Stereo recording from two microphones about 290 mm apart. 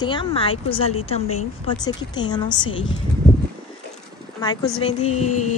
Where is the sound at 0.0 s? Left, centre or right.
Centre.